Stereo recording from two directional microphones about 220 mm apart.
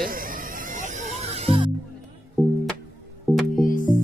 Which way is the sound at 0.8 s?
30° right (ahead or behind).